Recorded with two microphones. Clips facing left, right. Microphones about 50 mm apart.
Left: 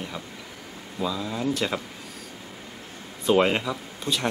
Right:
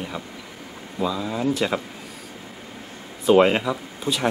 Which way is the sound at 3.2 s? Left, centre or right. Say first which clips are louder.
Right 5 dB; centre.